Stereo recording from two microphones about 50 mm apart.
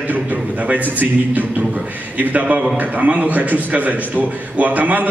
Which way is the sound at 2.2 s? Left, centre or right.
Right.